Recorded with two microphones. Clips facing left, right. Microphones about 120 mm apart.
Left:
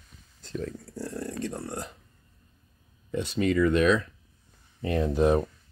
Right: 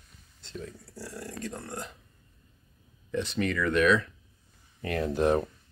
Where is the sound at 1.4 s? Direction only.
30° left (ahead or behind).